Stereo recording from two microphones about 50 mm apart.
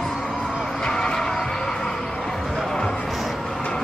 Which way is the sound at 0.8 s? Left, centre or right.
Centre.